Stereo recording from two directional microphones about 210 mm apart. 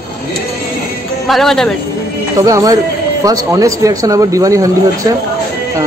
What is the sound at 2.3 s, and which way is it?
Speech, 15° right (ahead or behind).